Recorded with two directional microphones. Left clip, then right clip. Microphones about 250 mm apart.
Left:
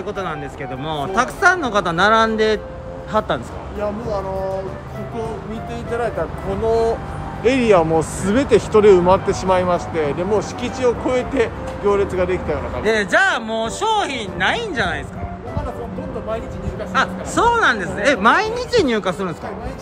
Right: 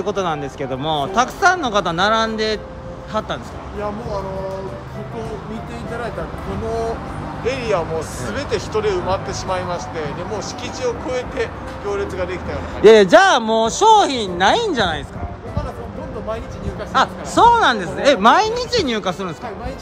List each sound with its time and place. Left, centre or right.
0.0 s speech: centre
7.4 s speech: left
12.8 s speech: centre
16.9 s speech: centre